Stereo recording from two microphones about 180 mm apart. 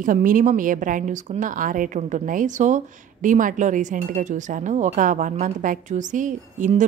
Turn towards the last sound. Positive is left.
turn(degrees=-45)  # may be behind; listen again after turning